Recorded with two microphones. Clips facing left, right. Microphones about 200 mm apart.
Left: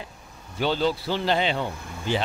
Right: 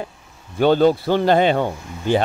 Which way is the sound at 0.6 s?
50° right (ahead or behind).